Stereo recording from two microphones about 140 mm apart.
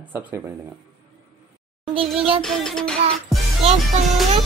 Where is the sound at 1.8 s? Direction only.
40° right (ahead or behind).